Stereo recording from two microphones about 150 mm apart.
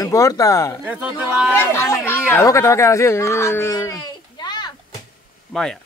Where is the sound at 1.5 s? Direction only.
20° left (ahead or behind).